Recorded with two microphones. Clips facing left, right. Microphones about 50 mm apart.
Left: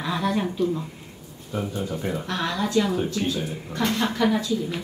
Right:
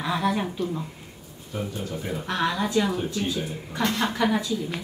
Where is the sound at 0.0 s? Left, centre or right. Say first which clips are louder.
Even; centre.